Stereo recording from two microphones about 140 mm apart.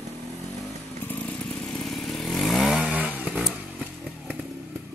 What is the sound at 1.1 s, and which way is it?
Motorcycle, 10° left (ahead or behind).